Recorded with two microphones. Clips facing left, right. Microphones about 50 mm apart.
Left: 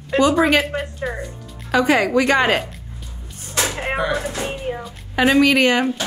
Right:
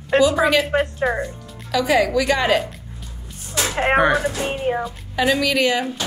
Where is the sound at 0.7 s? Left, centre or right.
Right.